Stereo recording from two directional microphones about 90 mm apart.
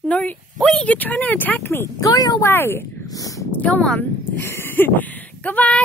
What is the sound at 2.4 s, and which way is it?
Speech, 25° left (ahead or behind).